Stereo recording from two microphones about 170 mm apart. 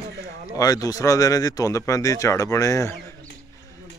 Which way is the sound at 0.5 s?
20° left (ahead or behind).